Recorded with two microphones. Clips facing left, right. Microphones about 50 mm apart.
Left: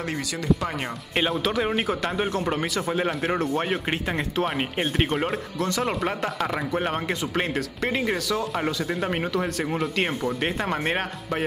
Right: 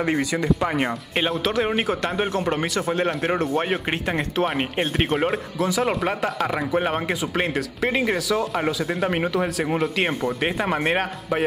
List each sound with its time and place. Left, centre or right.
0.0 s speech: right
1.1 s speech: centre